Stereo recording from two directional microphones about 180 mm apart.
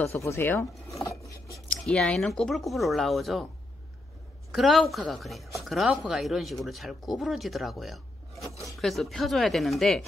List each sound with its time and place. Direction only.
0.0 s filing: 15° left (ahead or behind)
1.7 s speech: 5° left (ahead or behind)
4.5 s speech: centre (ahead or behind)